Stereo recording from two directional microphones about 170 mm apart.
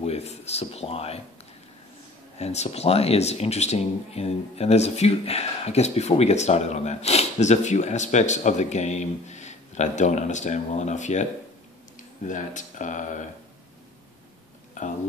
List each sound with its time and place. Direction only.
0.0 s speech: 40° left (ahead or behind)
2.3 s speech: 40° left (ahead or behind)